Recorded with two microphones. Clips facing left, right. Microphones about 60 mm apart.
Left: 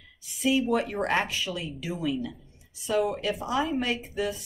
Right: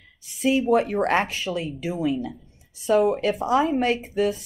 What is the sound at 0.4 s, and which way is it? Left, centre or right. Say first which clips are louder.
Speech: right 5 dB; right.